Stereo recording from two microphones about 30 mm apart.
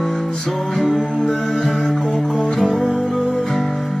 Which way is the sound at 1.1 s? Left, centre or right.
Centre.